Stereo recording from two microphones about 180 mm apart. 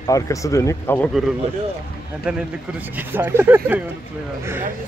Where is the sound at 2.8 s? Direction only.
10° right (ahead or behind).